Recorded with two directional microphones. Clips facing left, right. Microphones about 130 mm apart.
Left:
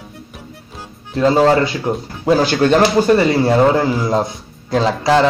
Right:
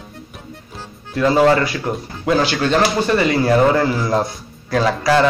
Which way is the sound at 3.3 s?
25° left (ahead or behind).